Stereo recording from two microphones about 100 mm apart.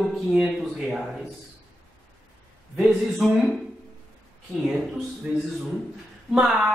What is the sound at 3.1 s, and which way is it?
Speech, centre (ahead or behind).